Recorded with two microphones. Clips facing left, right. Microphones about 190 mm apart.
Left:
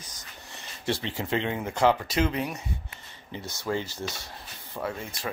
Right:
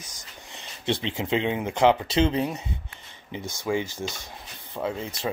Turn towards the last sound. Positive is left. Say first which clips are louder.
# right 4 dB
turn(degrees=-20)  # may be behind; listen again after turning